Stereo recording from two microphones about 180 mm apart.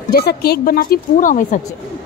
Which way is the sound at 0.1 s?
60° left (ahead or behind).